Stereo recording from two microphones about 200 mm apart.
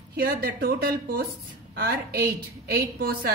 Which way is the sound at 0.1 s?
50° right (ahead or behind).